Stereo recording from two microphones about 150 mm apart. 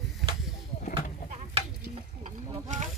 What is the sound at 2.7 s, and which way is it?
Fowl, 55° right (ahead or behind).